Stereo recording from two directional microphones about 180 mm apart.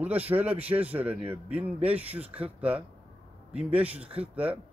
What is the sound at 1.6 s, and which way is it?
Speech, 35° right (ahead or behind).